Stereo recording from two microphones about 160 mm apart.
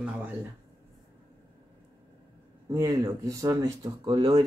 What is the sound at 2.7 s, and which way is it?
Speech, 20° right (ahead or behind).